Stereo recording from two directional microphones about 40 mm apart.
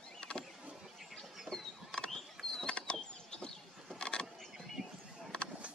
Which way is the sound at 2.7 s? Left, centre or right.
Left.